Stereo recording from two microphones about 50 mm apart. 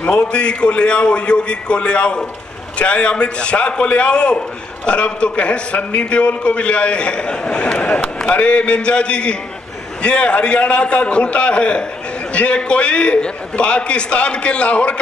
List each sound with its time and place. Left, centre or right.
0.0 s a man's voice: left